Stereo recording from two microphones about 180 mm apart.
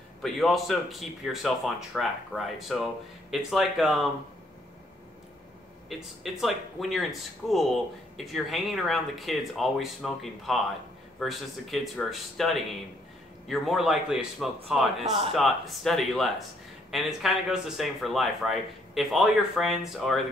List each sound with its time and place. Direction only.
0.2 s speech: centre (ahead or behind)
5.9 s speech: centre (ahead or behind)